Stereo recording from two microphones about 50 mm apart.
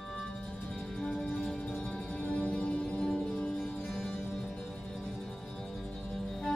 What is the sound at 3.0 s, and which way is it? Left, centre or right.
Music, centre.